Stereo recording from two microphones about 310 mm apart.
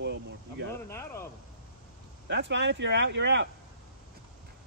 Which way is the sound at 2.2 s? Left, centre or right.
Right.